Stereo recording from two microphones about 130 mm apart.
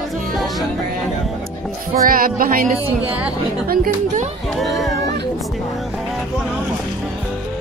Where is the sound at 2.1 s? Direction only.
90° right.